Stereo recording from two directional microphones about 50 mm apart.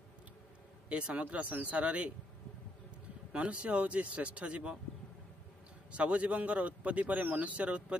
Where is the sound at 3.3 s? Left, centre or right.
Right.